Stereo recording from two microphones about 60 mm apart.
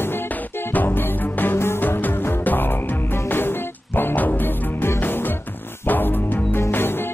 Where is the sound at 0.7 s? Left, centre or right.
Left.